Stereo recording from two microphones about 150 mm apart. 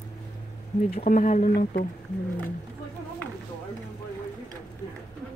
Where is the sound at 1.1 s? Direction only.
60° left (ahead or behind).